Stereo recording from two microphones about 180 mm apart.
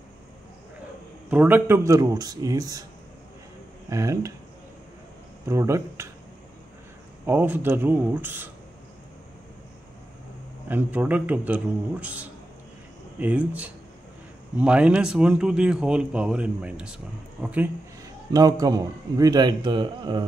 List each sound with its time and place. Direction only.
1.3 s speech: 10° right (ahead or behind)
3.9 s a man's voice: 15° right (ahead or behind)
5.5 s a man's voice: 15° right (ahead or behind)
7.2 s a man's voice: 10° right (ahead or behind)
10.7 s a man's voice: 10° right (ahead or behind)
18.0 s speech: 20° right (ahead or behind)